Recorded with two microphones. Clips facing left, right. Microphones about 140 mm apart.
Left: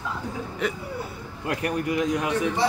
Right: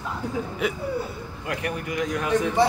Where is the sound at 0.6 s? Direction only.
10° right (ahead or behind).